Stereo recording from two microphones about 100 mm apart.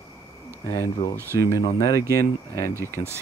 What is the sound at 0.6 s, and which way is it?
Speech, 30° left (ahead or behind).